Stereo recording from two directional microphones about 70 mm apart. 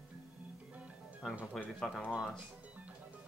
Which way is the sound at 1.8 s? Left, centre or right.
Centre.